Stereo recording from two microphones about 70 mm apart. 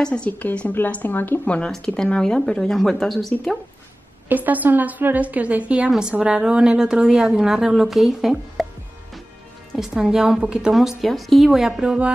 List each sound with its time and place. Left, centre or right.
0.0 s a woman's voice: centre
1.7 s speech: centre
4.3 s a woman's voice: right; by 8.6 s centre
9.8 s a woman's voice: centre